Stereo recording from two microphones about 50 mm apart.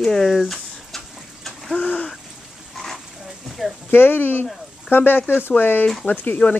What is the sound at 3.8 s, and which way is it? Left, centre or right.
Speech, left.